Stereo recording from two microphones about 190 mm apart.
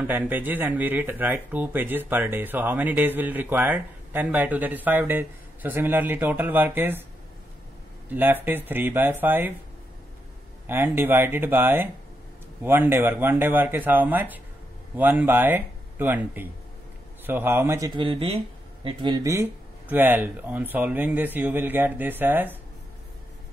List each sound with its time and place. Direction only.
0.0 s speech: 10° right (ahead or behind)
8.1 s speech: 10° right (ahead or behind)
10.7 s speech: 10° right (ahead or behind)